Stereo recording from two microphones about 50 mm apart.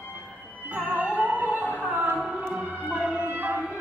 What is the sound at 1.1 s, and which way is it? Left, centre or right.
Music, right.